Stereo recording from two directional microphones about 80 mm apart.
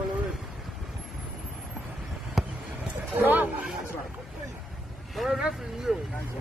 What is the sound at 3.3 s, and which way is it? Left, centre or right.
Speech, centre.